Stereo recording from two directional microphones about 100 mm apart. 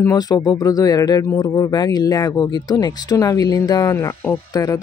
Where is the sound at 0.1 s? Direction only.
40° left (ahead or behind).